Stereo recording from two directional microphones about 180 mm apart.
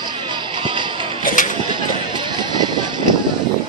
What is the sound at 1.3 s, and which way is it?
Music, 50° left (ahead or behind).